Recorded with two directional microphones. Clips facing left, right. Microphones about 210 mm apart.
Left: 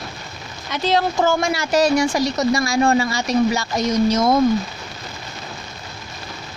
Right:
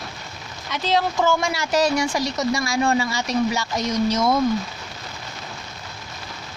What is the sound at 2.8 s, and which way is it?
Speech, 60° left (ahead or behind).